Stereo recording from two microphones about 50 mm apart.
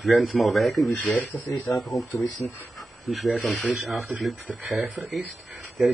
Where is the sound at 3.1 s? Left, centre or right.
Centre.